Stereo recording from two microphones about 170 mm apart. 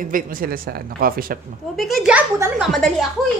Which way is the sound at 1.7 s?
Centre (ahead or behind).